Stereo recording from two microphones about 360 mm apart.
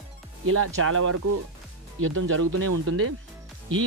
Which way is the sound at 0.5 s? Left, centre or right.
Right.